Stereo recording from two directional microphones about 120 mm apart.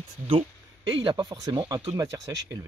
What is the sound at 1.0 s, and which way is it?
Speech, 35° right (ahead or behind).